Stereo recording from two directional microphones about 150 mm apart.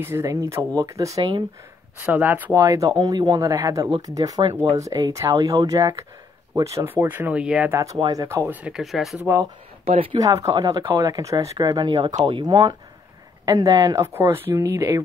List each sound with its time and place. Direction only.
0.0 s speech: 20° right (ahead or behind)
2.0 s speech: 10° right (ahead or behind)
7.8 s speech: 25° right (ahead or behind); by 9.2 s centre (ahead or behind)
9.2 s speech: 15° right (ahead or behind)
9.8 s speech: 40° right (ahead or behind)
10.1 s speech: 25° right (ahead or behind)